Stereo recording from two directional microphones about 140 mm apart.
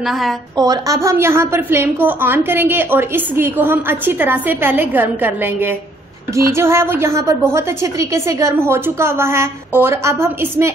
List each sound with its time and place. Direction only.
0.0 s a woman's voice: centre (ahead or behind)
0.6 s a woman's voice: 25° right (ahead or behind)